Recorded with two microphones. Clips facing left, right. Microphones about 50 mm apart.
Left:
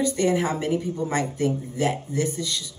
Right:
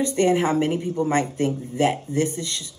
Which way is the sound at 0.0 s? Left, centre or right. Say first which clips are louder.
Right 2 dB; right.